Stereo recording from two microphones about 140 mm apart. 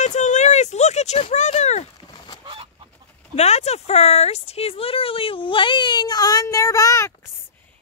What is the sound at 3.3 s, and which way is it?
Speech, 50° left (ahead or behind).